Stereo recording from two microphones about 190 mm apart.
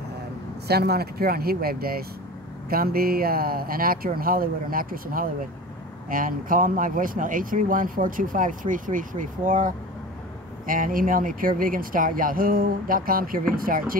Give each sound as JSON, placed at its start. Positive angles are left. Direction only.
{"t": 0.7, "sound": "speech", "side_deg": -55}